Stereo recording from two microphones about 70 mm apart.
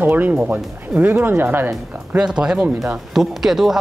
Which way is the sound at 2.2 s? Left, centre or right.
Centre.